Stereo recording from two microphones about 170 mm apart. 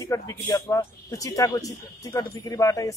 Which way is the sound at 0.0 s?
20° left (ahead or behind).